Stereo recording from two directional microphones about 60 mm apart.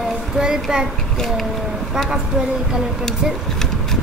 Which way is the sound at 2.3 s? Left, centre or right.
Centre.